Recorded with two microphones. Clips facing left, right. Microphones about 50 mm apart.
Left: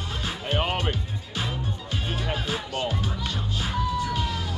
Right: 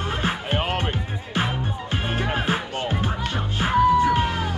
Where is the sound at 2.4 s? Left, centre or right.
Right.